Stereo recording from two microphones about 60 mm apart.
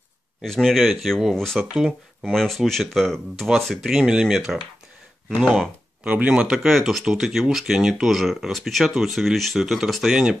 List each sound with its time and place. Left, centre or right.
0.4 s speech: centre
5.4 s speech: centre
6.0 s speech: right
6.4 s speech: centre